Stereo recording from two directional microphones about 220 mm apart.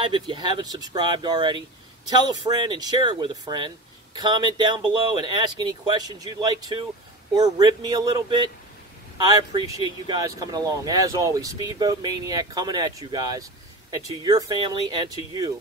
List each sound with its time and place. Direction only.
0.0 s speech: 20° right (ahead or behind)